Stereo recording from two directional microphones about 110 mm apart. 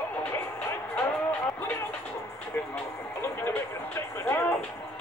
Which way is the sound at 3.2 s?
20° left (ahead or behind).